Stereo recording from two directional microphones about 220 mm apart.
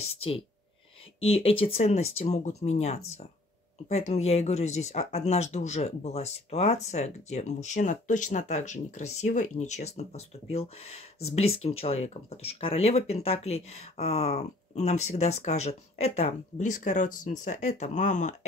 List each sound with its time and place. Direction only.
0.0 s speech: 25° left (ahead or behind)